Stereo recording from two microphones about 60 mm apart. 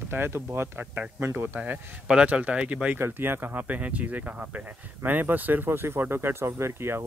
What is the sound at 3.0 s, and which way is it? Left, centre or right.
Speech, right.